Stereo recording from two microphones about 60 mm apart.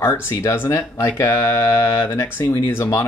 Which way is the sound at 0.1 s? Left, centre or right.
Left.